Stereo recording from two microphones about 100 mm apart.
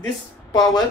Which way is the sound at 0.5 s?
40° left (ahead or behind).